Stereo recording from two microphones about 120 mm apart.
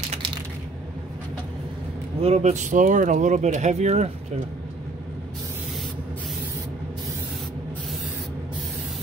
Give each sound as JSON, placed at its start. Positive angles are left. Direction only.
{"t": 2.2, "sound": "speech", "side_deg": -70}
{"t": 3.5, "sound": "speech", "side_deg": -75}